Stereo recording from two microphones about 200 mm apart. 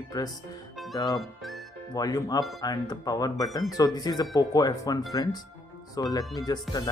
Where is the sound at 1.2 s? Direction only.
Centre (ahead or behind).